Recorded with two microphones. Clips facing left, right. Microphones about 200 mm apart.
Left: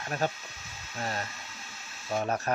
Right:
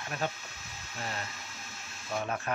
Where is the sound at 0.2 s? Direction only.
40° left (ahead or behind).